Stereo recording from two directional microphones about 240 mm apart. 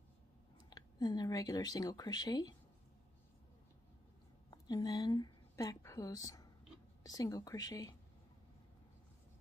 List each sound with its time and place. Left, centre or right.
0.7 s speech: centre
4.5 s a woman's voice: centre